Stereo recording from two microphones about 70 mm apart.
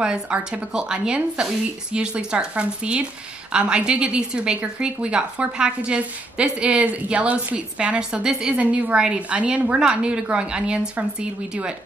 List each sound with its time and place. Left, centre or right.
0.0 s a woman's voice: centre